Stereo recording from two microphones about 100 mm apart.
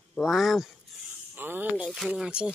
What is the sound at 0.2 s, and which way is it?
Speech, 5° right (ahead or behind).